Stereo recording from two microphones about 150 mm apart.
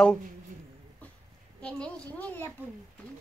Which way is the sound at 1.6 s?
5° left (ahead or behind).